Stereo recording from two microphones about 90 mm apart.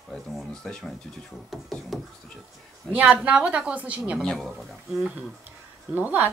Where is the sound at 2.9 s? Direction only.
15° right (ahead or behind).